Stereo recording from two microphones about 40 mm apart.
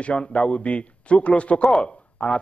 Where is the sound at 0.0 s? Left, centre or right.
Left.